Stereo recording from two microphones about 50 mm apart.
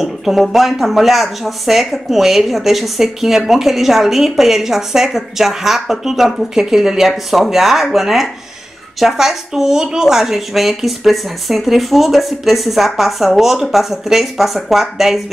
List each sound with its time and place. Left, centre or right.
0.0 s speech: centre